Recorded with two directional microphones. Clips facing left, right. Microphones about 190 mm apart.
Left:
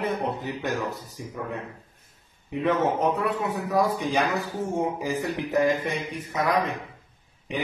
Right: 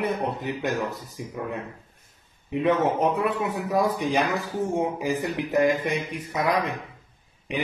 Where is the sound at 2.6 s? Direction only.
20° right (ahead or behind).